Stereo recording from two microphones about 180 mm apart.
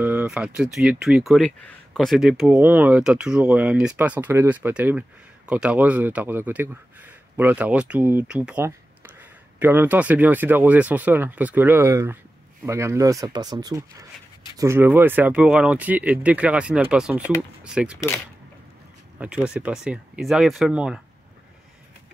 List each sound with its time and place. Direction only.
0.0 s speech: 10° right (ahead or behind)
19.1 s speech: 5° right (ahead or behind)